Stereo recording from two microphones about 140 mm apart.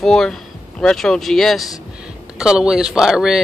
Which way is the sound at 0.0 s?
5° left (ahead or behind).